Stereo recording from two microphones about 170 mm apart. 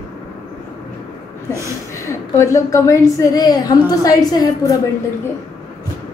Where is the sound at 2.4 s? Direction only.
20° left (ahead or behind).